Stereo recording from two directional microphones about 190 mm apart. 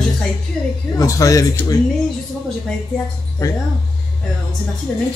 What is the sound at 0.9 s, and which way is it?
Speech, 15° left (ahead or behind).